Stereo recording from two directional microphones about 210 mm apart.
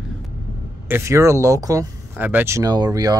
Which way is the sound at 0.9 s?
15° right (ahead or behind).